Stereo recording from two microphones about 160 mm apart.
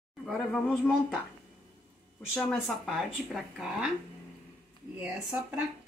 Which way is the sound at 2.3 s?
5° left (ahead or behind).